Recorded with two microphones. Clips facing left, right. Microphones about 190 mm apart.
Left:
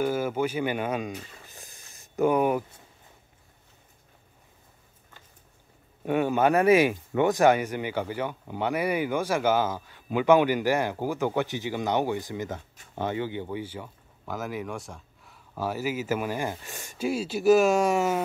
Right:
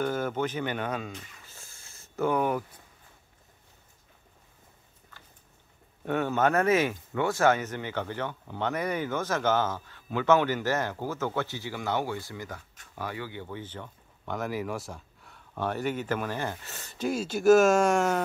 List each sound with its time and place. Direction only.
0.0 s speech: 10° left (ahead or behind)
1.4 s a sound: 15° left (ahead or behind)
6.0 s speech: 10° left (ahead or behind)